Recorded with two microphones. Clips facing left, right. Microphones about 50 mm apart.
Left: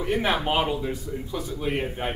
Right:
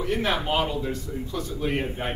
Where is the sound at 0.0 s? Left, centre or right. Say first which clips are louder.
Left 1 dB; centre.